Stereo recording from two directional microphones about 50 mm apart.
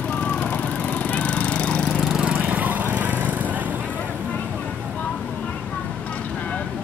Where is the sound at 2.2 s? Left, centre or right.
Right.